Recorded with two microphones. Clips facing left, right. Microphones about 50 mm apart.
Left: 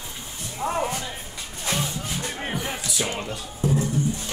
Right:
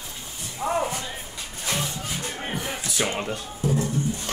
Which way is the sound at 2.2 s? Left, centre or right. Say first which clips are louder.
Left 1 dB; centre.